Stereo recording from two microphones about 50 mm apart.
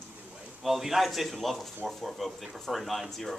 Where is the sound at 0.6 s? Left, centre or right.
Centre.